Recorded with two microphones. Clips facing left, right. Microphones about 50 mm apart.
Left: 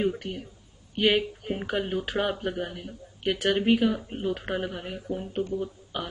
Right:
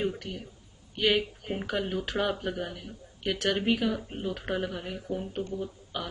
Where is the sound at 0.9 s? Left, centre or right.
Centre.